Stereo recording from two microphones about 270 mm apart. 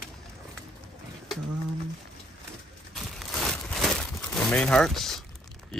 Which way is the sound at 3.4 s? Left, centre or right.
Centre.